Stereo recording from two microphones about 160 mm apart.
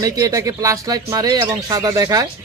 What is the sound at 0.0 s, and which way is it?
Speech, 20° right (ahead or behind).